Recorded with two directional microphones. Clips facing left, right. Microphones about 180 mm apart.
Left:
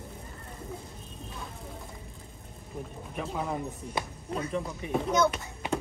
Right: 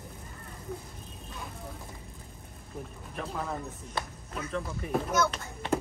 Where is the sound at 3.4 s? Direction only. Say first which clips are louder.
Left 3 dB; 15° left (ahead or behind).